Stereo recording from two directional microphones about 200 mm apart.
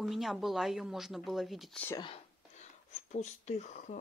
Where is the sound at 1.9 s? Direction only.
20° left (ahead or behind).